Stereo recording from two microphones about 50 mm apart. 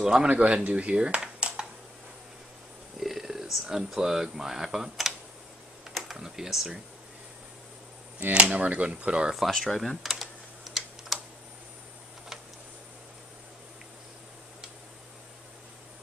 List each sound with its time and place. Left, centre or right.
0.0 s speech: centre
0.3 s speech: right
0.9 s a sound: centre
3.0 s speech: centre
8.3 s speech: right
9.5 s speech: centre
10.0 s typing: centre